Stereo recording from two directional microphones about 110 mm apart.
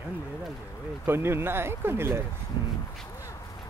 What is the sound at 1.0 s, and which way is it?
Speech, 20° right (ahead or behind).